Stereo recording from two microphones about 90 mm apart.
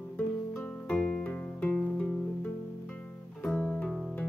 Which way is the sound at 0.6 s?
10° left (ahead or behind).